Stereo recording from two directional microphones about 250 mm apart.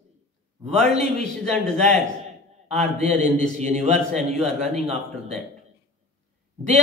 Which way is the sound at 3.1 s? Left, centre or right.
Right.